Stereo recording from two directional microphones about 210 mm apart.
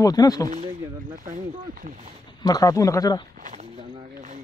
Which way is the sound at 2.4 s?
15° left (ahead or behind).